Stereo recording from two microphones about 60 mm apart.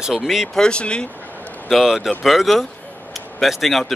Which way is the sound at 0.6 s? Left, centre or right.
Centre.